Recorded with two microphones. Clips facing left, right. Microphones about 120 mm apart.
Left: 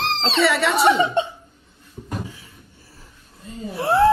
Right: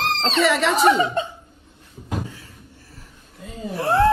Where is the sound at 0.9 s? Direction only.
25° left (ahead or behind).